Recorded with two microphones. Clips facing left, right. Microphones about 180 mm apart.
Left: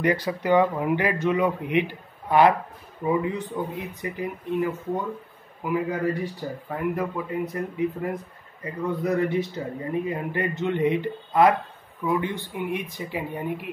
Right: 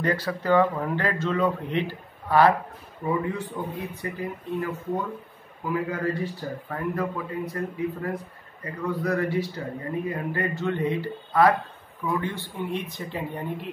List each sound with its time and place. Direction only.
0.0 s speech: 15° left (ahead or behind)
5.7 s speech: 15° left (ahead or behind)